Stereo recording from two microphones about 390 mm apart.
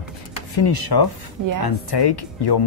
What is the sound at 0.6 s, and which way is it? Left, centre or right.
Speech, left.